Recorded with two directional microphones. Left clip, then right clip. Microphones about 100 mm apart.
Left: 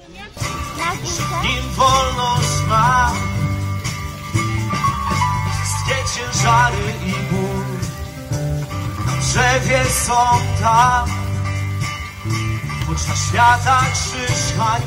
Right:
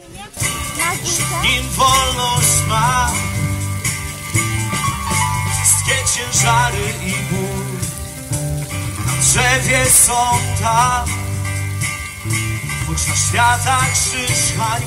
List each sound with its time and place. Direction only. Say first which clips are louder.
0.4 s music: right 3 dB; 20° right (ahead or behind)
4.4 s music: even; 25° right (ahead or behind)
9.0 s music: right 1 dB; 20° right (ahead or behind)